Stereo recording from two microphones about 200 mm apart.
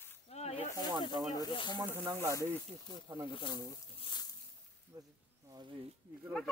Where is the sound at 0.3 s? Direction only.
30° left (ahead or behind).